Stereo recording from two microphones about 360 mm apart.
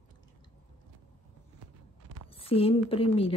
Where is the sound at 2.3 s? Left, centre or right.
Centre.